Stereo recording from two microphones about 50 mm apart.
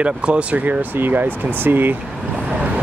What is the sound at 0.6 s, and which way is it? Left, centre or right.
Speech, right.